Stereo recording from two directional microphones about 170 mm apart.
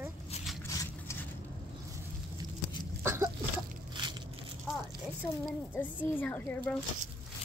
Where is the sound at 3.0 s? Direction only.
15° right (ahead or behind).